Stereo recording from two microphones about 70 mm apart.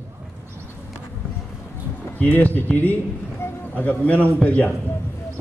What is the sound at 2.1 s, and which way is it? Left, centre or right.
A man's voice, left.